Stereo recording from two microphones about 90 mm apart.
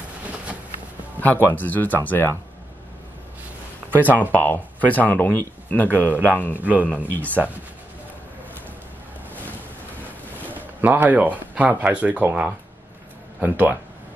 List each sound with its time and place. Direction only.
1.2 s speech: 20° left (ahead or behind)
4.2 s speech: 20° left (ahead or behind)
10.4 s speech: 20° right (ahead or behind)